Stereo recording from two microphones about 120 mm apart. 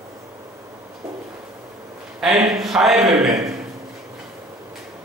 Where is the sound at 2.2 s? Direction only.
Centre (ahead or behind).